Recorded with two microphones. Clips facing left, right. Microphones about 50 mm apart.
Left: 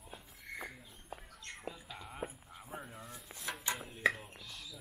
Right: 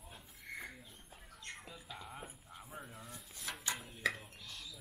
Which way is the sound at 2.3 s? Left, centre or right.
Centre.